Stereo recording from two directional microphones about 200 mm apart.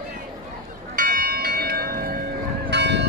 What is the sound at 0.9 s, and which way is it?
Church bell, 45° right (ahead or behind).